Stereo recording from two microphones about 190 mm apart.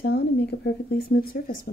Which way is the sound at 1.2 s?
50° left (ahead or behind).